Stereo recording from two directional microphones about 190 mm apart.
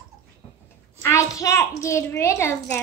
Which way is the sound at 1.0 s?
15° left (ahead or behind).